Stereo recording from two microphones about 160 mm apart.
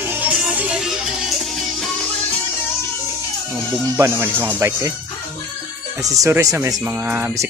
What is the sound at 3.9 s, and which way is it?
Speech, 15° right (ahead or behind).